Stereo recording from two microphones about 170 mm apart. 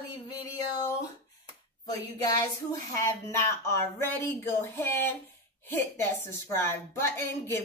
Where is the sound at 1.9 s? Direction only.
20° left (ahead or behind).